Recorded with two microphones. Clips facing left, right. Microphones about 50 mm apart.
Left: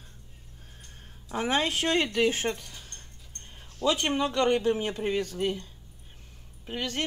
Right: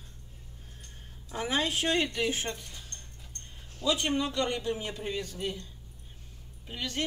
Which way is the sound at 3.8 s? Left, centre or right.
Left.